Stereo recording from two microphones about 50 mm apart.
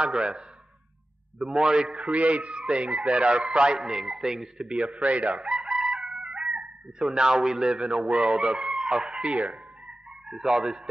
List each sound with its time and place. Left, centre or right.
0.0 s a man's voice: centre
1.4 s a man's voice: centre
2.0 s speech: right
5.3 s chicken: centre
7.0 s a man's voice: centre
8.1 s speech: right